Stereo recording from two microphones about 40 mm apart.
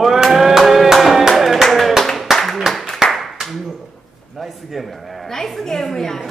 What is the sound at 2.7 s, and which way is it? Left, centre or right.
Clapping, centre.